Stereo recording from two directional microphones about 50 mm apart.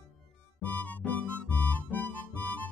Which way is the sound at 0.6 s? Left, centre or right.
Left.